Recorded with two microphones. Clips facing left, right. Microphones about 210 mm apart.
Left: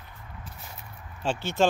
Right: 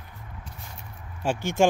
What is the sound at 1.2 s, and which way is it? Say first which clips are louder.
Speech: right 2 dB; 10° right (ahead or behind).